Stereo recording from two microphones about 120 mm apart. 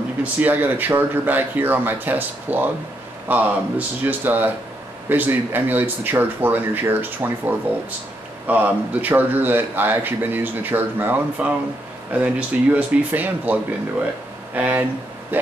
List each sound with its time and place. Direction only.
0.2 s speech: 15° right (ahead or behind)